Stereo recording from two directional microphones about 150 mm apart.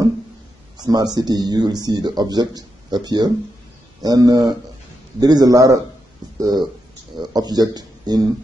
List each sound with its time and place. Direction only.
0.7 s speech: 25° right (ahead or behind)